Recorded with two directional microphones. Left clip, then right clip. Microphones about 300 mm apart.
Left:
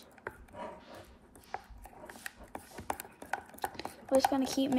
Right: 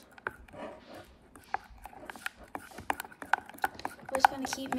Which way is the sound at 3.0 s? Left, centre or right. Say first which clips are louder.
Right 8 dB; centre.